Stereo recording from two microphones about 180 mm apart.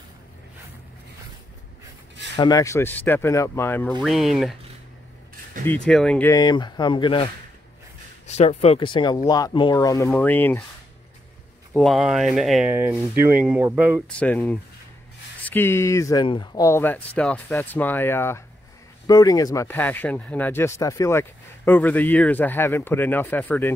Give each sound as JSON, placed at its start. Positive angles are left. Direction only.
{"t": 2.3, "sound": "speech", "side_deg": 20}
{"t": 5.7, "sound": "speech", "side_deg": 5}
{"t": 6.3, "sound": "speech", "side_deg": 25}
{"t": 8.3, "sound": "speech", "side_deg": 35}
{"t": 11.7, "sound": "speech", "side_deg": 0}
{"t": 14.0, "sound": "speech", "side_deg": 5}